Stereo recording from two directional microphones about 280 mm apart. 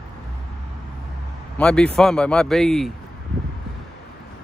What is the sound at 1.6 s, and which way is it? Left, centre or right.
Speech, centre.